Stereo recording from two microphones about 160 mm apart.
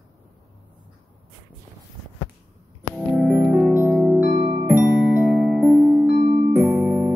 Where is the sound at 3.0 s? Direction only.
5° right (ahead or behind).